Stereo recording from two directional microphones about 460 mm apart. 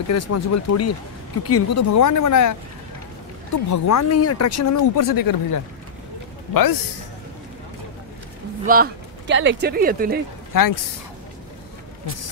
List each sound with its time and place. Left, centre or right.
0.1 s speech: left
3.7 s a man's voice: left
8.6 s speech: centre
10.5 s speech: left